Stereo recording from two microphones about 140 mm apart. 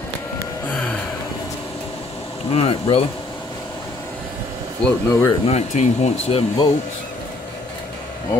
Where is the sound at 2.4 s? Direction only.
45° left (ahead or behind).